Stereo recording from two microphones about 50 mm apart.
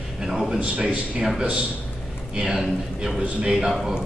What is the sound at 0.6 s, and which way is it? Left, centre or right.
Speech, right.